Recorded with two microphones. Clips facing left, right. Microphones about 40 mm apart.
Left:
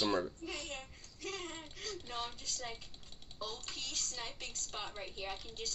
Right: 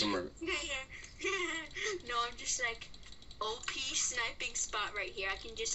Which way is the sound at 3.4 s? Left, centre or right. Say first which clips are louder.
Right 5 dB; right.